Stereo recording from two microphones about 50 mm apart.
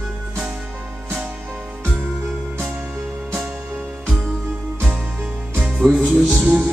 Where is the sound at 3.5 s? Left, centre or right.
Right.